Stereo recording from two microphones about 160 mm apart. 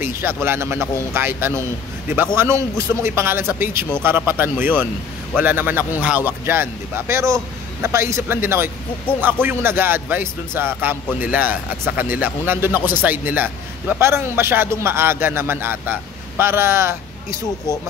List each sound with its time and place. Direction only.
0.0 s a man's voice: 15° right (ahead or behind)